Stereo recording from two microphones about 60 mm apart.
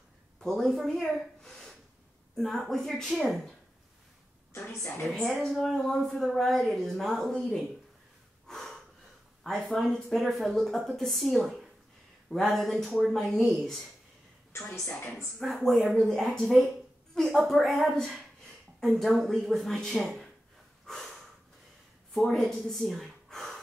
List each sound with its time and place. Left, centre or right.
0.4 s a woman's voice: centre
4.5 s a woman's voice: left
5.0 s speech: centre
8.5 s gasp: centre
9.4 s speech: centre
15.3 s speech: centre
17.1 s a sound: centre
17.4 s speech: centre
20.8 s snort: centre
22.1 s a woman's voice: centre